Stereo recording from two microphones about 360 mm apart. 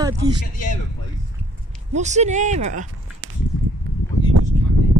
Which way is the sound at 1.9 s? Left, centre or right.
Centre.